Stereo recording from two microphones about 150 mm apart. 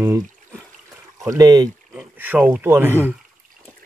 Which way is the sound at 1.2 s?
25° right (ahead or behind).